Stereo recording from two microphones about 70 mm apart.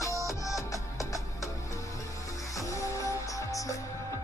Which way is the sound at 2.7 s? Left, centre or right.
Left.